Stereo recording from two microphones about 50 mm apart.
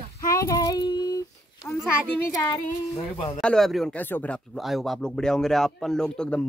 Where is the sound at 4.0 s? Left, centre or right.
Left.